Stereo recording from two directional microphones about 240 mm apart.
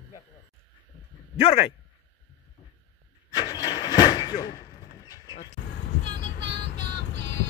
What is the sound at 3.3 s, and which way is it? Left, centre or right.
Vehicle, centre.